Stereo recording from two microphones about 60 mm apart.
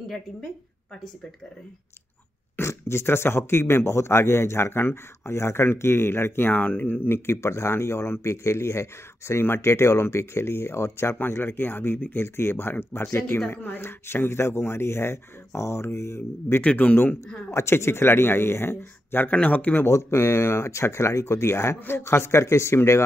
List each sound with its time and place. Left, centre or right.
2.7 s speech: left
6.5 s speech: left
16.6 s a man's voice: left
17.5 s a man's voice: left
19.9 s speech: left